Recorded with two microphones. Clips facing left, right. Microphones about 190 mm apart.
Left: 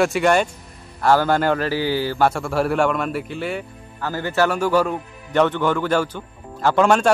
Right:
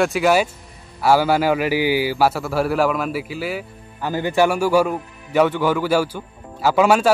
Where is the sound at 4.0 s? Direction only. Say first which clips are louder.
Right 3 dB; 15° right (ahead or behind).